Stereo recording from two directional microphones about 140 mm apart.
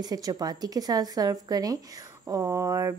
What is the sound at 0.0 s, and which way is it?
Speech, 25° right (ahead or behind).